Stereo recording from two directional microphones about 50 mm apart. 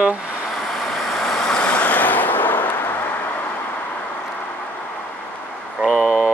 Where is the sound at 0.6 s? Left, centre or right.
Centre; by 3.0 s left.